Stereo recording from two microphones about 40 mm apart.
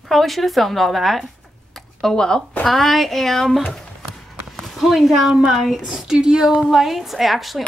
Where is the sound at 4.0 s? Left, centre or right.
Centre.